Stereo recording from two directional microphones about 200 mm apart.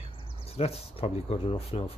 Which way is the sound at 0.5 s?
30° left (ahead or behind).